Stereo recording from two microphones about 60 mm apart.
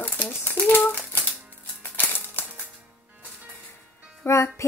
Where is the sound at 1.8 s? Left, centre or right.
Left.